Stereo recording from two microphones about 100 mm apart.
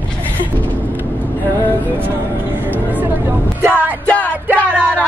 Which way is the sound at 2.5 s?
20° right (ahead or behind).